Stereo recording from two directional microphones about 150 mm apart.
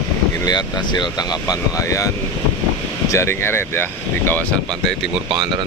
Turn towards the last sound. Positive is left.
turn(degrees=15)  # may be behind; listen again after turning